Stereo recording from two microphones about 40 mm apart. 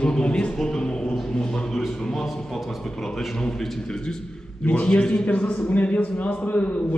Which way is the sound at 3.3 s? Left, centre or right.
Centre.